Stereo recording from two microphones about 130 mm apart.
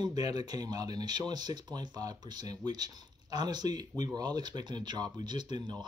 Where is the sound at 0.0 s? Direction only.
30° right (ahead or behind).